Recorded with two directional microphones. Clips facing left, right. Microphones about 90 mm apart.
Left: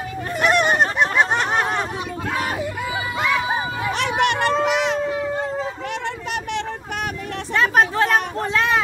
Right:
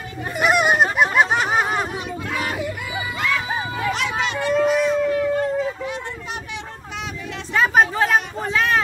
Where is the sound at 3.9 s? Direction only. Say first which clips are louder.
Left 4 dB; 65° left (ahead or behind); by 4.9 s 80° left.